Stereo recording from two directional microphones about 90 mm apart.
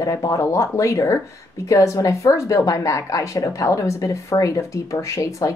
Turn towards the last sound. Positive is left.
turn(degrees=35)  # may be behind; listen again after turning